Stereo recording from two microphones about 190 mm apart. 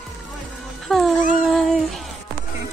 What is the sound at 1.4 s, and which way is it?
Speech, centre (ahead or behind).